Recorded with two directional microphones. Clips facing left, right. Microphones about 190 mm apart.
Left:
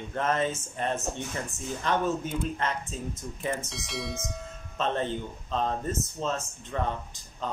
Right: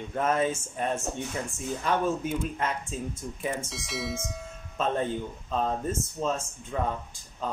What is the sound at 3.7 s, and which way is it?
Speech, centre (ahead or behind).